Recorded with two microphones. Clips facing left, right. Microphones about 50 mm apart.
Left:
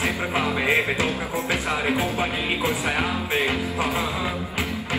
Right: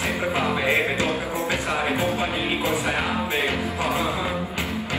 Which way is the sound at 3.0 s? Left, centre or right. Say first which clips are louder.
Even; left.